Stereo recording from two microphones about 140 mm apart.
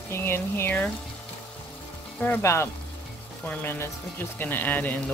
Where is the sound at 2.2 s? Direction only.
15° left (ahead or behind).